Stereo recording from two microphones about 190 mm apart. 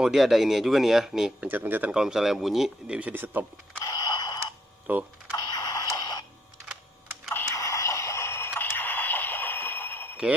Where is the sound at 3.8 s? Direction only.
20° left (ahead or behind).